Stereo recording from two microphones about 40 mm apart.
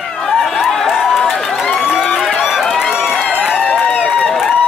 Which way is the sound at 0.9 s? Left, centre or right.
Centre.